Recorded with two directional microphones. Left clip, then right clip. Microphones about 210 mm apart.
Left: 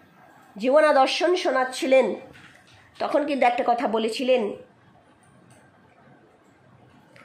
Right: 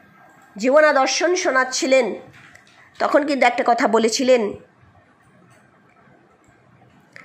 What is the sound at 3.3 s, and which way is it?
Speech, 10° right (ahead or behind).